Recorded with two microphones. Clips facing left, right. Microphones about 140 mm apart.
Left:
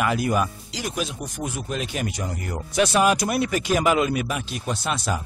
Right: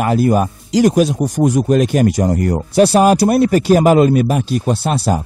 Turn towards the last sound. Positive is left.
turn(degrees=-35)  # may be behind; listen again after turning